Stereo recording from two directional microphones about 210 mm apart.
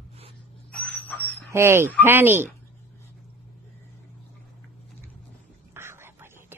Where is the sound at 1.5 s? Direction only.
10° right (ahead or behind).